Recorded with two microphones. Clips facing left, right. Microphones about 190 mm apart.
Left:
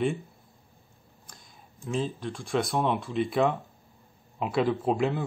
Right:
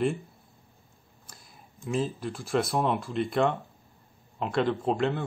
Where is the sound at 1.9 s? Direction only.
5° right (ahead or behind).